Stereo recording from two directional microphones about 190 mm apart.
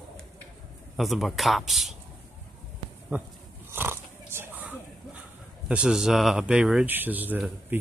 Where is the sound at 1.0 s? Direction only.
Centre (ahead or behind).